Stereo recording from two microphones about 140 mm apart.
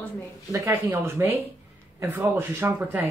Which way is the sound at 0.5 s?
20° right (ahead or behind).